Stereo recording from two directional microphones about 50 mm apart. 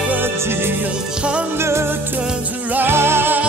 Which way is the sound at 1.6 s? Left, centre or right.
Right.